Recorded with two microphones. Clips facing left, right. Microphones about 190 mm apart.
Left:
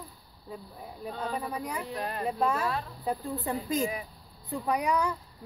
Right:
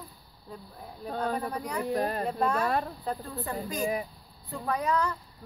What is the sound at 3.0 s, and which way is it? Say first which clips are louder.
Speech: left 2 dB; 15° left (ahead or behind).